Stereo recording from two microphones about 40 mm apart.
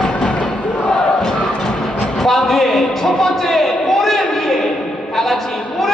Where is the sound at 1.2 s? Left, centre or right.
Centre.